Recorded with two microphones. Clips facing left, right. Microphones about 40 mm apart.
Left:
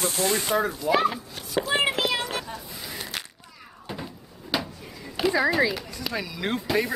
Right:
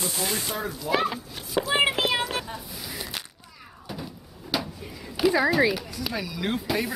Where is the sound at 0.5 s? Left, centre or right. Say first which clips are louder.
Left 8 dB; left.